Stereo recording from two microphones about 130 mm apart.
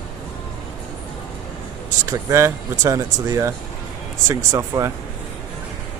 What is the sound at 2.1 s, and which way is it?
Speech, 20° right (ahead or behind).